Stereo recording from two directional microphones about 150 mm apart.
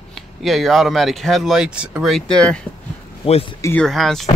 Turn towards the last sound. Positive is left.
turn(degrees=0)  # may be behind; listen again after turning